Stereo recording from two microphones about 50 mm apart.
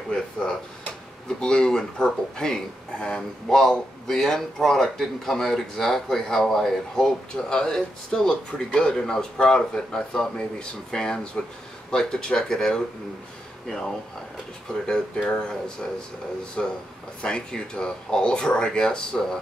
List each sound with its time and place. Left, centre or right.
0.4 s speech: centre
16.6 s speech: left